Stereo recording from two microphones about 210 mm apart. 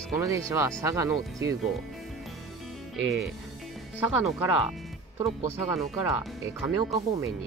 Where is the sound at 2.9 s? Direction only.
Centre (ahead or behind).